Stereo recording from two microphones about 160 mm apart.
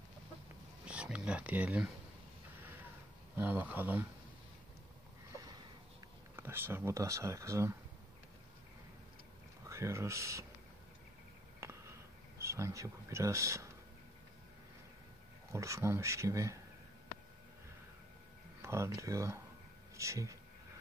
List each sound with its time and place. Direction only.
0.8 s speech: 5° right (ahead or behind)
3.3 s speech: 10° right (ahead or behind)
6.3 s speech: 15° right (ahead or behind)
9.7 s speech: 20° right (ahead or behind)
11.6 s a sound: 15° right (ahead or behind)
12.4 s speech: 15° right (ahead or behind)
15.5 s speech: 20° right (ahead or behind)
18.6 s speech: 15° right (ahead or behind)